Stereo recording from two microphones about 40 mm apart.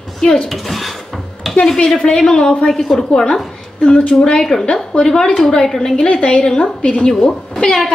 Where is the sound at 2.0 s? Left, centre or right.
Centre.